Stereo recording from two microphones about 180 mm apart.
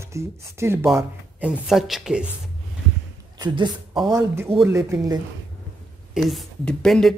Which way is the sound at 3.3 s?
25° right (ahead or behind).